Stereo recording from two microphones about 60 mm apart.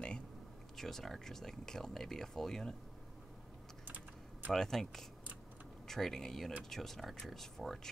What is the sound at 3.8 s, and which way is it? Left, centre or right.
Typing, right.